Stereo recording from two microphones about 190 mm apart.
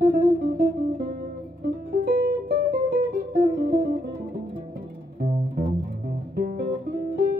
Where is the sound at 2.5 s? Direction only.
55° right (ahead or behind).